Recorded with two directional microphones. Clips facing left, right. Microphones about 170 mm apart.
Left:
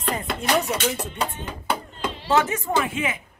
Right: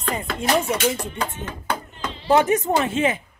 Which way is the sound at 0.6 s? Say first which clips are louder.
Right 3 dB; 10° right (ahead or behind).